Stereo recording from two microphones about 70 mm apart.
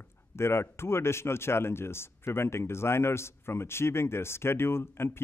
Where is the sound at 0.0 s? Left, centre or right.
Left.